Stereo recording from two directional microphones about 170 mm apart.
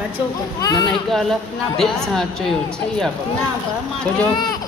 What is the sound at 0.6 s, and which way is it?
Speech, 25° left (ahead or behind).